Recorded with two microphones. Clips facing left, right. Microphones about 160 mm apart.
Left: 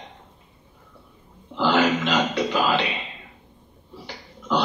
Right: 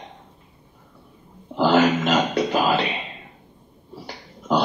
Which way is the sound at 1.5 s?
45° right (ahead or behind).